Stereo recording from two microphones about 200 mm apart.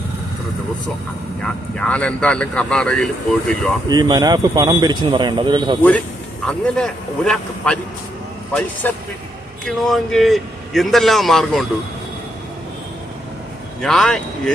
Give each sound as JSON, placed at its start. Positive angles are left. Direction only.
{"t": 1.4, "sound": "speech", "side_deg": 5}
{"t": 3.9, "sound": "speech", "side_deg": -20}
{"t": 5.9, "sound": "speech", "side_deg": 5}
{"t": 8.8, "sound": "a man's voice", "side_deg": 10}
{"t": 13.7, "sound": "speech", "side_deg": 0}